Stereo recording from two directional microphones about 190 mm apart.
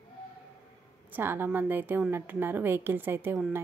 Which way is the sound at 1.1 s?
10° right (ahead or behind).